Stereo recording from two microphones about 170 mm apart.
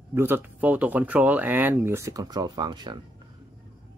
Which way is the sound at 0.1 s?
15° right (ahead or behind).